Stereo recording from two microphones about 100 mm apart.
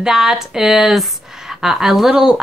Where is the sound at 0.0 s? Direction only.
5° right (ahead or behind).